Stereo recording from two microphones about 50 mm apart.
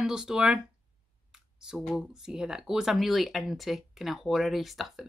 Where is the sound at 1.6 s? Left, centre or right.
Centre.